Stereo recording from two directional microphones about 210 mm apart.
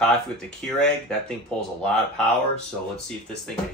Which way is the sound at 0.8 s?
5° left (ahead or behind).